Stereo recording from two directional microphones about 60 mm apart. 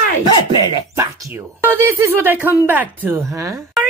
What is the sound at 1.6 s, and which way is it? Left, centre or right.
Speech, right.